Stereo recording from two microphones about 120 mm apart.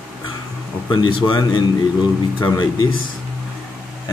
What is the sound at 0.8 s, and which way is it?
Speech, 40° left (ahead or behind).